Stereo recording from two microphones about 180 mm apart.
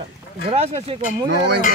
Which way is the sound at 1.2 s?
75° right (ahead or behind).